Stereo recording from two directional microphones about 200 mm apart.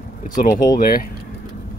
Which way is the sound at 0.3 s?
40° left (ahead or behind).